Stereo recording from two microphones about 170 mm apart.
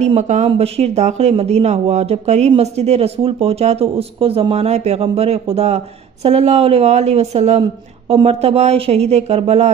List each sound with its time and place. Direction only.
0.0 s speech: 45° right (ahead or behind)